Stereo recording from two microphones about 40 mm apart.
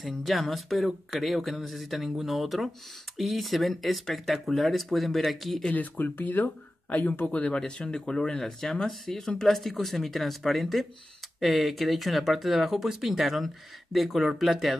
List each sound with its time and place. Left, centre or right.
0.2 s speech: centre
5.8 s speech: left
6.9 s speech: left
7.3 s speech: left; by 14.8 s centre